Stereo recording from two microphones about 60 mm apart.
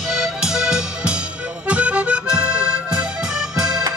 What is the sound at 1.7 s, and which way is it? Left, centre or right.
Accordion, right.